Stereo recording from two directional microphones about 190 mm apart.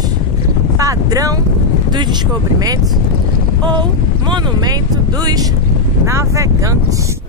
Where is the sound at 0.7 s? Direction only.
15° right (ahead or behind).